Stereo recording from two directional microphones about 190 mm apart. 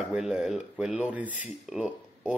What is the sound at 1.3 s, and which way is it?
Speech, 40° left (ahead or behind).